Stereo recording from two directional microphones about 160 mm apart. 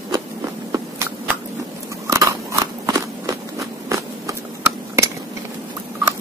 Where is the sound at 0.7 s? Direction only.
15° right (ahead or behind).